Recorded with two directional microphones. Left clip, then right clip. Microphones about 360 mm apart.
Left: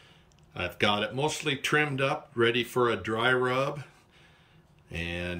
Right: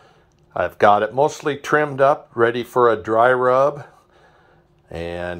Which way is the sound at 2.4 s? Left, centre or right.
Right.